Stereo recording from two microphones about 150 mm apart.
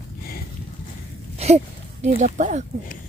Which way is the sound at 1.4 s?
50° right (ahead or behind).